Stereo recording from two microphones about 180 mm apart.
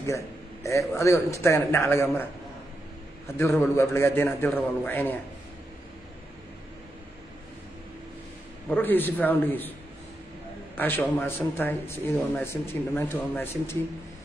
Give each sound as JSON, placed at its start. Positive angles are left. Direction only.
{"t": 0.7, "sound": "a man's voice", "side_deg": 15}
{"t": 3.3, "sound": "a man's voice", "side_deg": 15}
{"t": 8.6, "sound": "a man's voice", "side_deg": 10}
{"t": 10.8, "sound": "a man's voice", "side_deg": 10}